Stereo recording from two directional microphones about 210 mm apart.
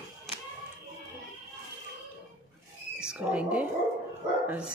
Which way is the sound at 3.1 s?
5° right (ahead or behind).